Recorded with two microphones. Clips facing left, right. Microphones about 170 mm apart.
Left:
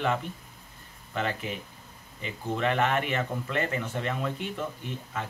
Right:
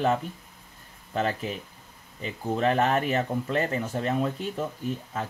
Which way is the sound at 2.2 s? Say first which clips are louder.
Right 3 dB; 35° right (ahead or behind).